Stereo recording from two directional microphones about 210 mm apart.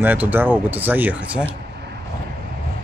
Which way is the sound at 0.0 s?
10° right (ahead or behind).